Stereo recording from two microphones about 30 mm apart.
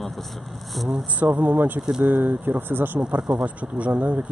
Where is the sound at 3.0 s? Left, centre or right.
Right.